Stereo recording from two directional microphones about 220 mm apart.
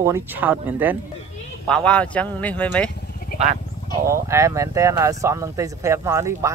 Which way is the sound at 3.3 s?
40° left (ahead or behind).